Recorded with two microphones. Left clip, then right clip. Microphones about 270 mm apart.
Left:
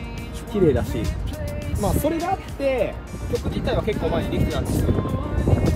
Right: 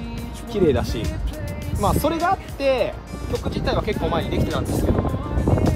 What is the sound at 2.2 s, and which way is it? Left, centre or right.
Speech, centre.